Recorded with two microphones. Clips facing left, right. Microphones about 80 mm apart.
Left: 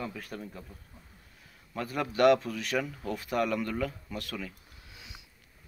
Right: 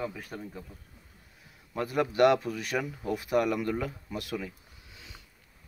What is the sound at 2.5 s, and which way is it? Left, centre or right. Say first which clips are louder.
Speech: even; centre.